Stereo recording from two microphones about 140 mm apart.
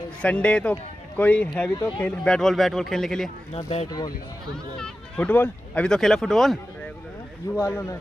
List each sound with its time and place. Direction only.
0.2 s speech: 10° left (ahead or behind)
3.5 s speech: 45° left (ahead or behind)
4.7 s speech: 5° left (ahead or behind)
7.5 s speech: 20° left (ahead or behind)